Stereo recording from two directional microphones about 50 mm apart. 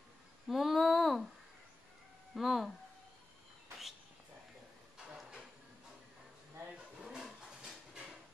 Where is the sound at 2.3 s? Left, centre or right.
Centre.